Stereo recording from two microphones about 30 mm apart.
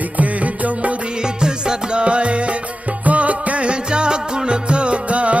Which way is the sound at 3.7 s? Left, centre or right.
Right.